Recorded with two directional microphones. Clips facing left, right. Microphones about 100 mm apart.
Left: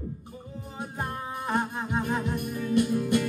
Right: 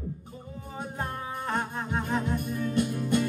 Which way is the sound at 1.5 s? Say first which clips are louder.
Left 3 dB; 15° left (ahead or behind).